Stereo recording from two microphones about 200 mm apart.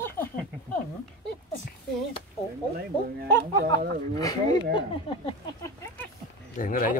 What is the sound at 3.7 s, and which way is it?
Speech, 20° left (ahead or behind).